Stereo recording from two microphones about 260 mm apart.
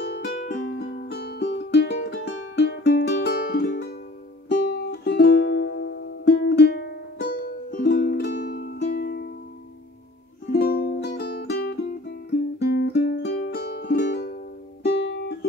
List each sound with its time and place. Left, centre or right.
0.0 s music: left
10.5 s music: left